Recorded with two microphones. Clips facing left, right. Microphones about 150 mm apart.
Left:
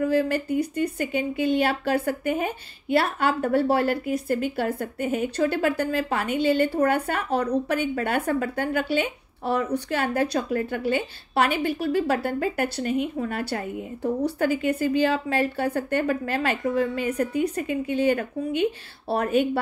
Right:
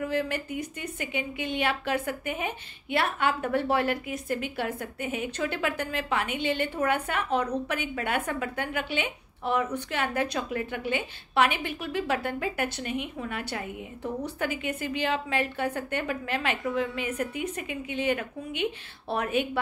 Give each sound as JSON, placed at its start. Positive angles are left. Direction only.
{"t": 0.0, "sound": "speech", "side_deg": 35}